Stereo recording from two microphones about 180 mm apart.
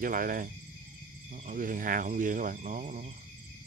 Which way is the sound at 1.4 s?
50° right (ahead or behind).